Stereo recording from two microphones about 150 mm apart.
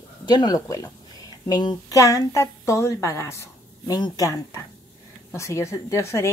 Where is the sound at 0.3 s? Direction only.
25° left (ahead or behind).